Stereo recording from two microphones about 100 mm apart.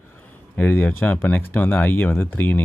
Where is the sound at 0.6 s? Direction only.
20° left (ahead or behind).